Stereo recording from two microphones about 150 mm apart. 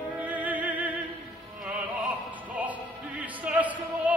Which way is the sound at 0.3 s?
10° right (ahead or behind).